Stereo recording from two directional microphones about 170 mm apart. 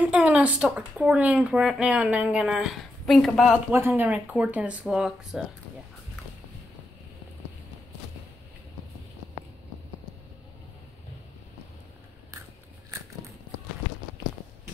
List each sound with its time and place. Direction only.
0.0 s speech: 5° right (ahead or behind)
3.7 s speech: 10° right (ahead or behind)